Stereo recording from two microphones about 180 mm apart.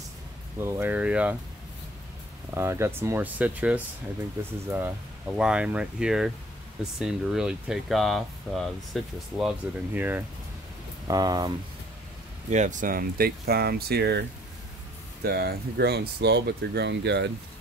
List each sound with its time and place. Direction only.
0.6 s speech: 10° right (ahead or behind)
2.5 s speech: 15° right (ahead or behind); by 9.5 s centre (ahead or behind)
9.9 s speech: 10° right (ahead or behind)
11.1 s speech: 20° right (ahead or behind)
12.4 s speech: 40° right (ahead or behind); by 14.2 s 65° right (ahead or behind)
15.2 s speech: 60° right (ahead or behind)